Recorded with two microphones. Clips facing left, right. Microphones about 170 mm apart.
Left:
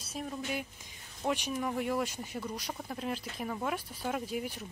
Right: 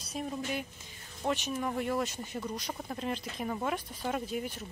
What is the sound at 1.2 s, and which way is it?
Speech, 10° left (ahead or behind).